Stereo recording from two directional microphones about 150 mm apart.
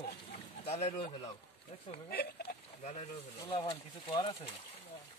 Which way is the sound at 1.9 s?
85° left.